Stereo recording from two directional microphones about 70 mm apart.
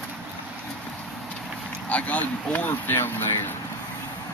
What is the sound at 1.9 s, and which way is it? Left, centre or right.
Speech, centre.